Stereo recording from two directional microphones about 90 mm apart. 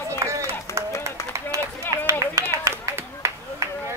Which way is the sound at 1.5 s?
40° right (ahead or behind).